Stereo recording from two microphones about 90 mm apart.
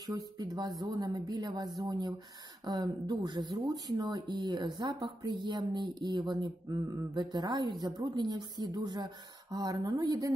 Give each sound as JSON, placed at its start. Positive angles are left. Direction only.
{"t": 0.0, "sound": "speech", "side_deg": -45}